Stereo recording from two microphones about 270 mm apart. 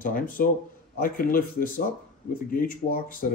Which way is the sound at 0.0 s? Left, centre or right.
Left.